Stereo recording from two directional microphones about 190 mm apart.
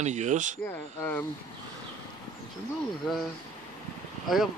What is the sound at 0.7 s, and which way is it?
Speech, 10° left (ahead or behind).